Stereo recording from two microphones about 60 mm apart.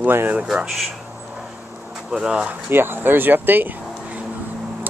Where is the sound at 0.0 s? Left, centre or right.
Right.